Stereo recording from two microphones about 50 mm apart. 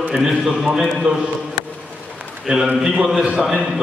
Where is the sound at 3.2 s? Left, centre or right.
Centre.